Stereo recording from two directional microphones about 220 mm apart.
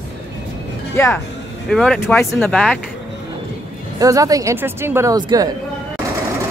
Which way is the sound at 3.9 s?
15° right (ahead or behind).